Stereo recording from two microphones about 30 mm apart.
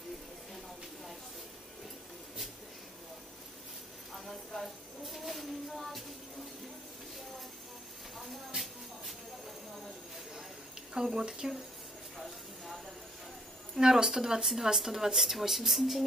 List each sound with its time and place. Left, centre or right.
4.1 s a sound: centre
11.0 s speech: centre
13.7 s speech: right; by 16.0 s centre